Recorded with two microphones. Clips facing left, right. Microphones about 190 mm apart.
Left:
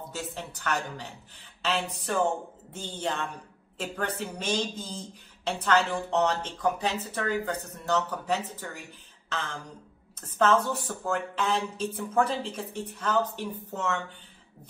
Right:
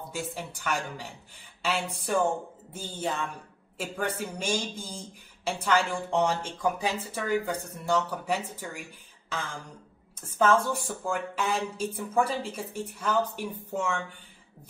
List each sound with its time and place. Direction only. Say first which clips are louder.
0.1 s speech: right 3 dB; 10° right (ahead or behind)
10.2 s speech: even; 10° right (ahead or behind)